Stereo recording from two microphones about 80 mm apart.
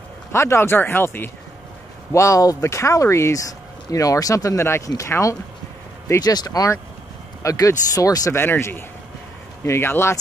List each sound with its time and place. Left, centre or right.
0.3 s speech: left
2.1 s speech: left
8.3 s speech: left